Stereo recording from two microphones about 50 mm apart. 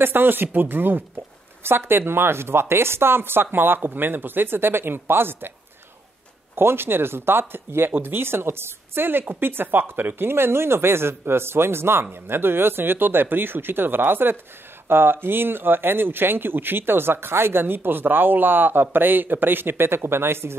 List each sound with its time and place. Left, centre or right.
0.0 s speech: right
6.5 s speech: right